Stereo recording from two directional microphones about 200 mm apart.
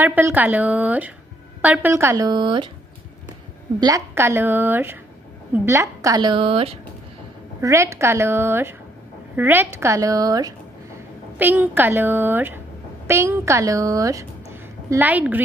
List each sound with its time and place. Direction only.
0.0 s a woman's voice: 10° right (ahead or behind)
3.8 s a woman's voice: 15° right (ahead or behind)
7.6 s a woman's voice: 15° right (ahead or behind)